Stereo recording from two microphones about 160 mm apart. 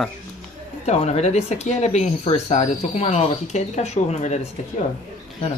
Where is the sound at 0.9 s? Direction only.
40° left (ahead or behind).